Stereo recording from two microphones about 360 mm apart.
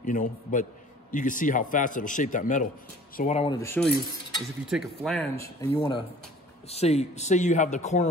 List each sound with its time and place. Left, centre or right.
0.0 s speech: left
3.2 s cutlery: centre
6.7 s speech: centre